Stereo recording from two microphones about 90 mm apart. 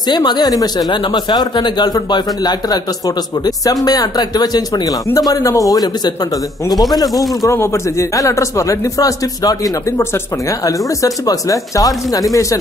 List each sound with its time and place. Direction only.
0.1 s speech: 55° left (ahead or behind)
7.5 s a man's voice: 30° left (ahead or behind)
10.6 s a man's voice: 40° left (ahead or behind)